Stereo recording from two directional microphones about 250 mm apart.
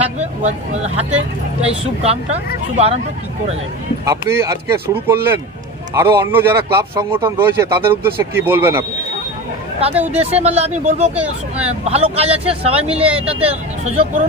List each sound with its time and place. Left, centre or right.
0.2 s speech: right
2.0 s speech: right
4.0 s a man's voice: centre
10.0 s speech: right